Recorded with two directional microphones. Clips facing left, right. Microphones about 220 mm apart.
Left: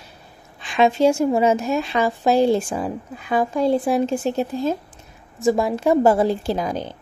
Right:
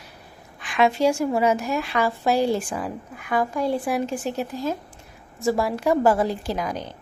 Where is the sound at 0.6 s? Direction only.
25° left (ahead or behind).